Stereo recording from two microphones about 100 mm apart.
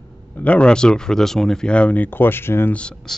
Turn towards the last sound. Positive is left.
turn(degrees=10)  # may be behind; listen again after turning